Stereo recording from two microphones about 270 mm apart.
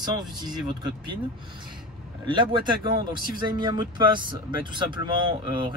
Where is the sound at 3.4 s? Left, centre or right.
Centre.